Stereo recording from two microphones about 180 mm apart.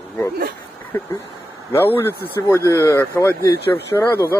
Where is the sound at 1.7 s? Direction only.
15° left (ahead or behind).